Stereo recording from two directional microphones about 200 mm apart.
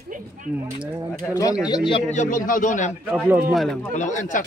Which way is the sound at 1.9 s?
35° left (ahead or behind).